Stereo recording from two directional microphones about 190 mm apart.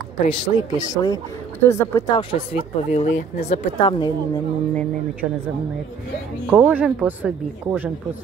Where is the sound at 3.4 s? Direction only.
30° left (ahead or behind).